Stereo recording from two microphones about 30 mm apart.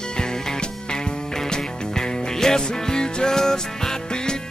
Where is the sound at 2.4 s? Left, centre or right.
Left.